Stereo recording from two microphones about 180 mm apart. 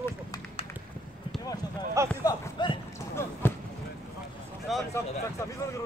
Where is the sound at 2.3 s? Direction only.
25° left (ahead or behind).